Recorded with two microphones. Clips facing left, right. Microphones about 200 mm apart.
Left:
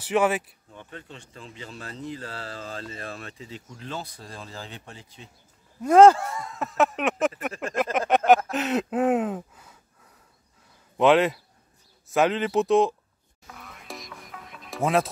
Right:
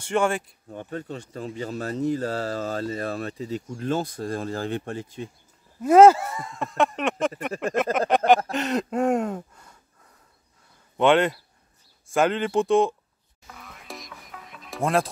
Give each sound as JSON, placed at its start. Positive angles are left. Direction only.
{"t": 0.0, "sound": "speech", "side_deg": 5}
{"t": 0.7, "sound": "speech", "side_deg": -45}
{"t": 5.8, "sound": "speech", "side_deg": -5}
{"t": 8.5, "sound": "a sound", "side_deg": 0}
{"t": 11.0, "sound": "speech", "side_deg": 0}
{"t": 13.5, "sound": "music", "side_deg": 0}